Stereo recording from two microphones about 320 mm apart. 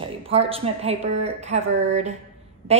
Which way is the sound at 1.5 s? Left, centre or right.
Right.